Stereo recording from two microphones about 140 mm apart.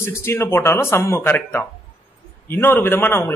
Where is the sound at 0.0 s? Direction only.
20° left (ahead or behind).